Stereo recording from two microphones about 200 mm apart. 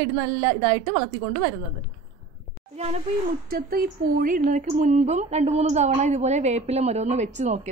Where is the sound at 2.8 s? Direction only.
30° right (ahead or behind).